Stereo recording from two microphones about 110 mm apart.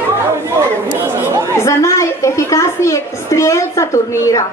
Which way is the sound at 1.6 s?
30° left (ahead or behind).